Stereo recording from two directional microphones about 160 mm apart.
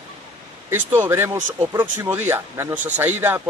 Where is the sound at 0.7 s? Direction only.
15° right (ahead or behind).